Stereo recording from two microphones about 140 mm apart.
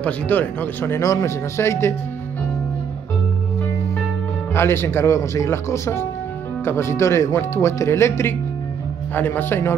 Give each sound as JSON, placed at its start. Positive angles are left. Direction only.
{"t": 0.0, "sound": "speech", "side_deg": 10}
{"t": 4.6, "sound": "speech", "side_deg": 20}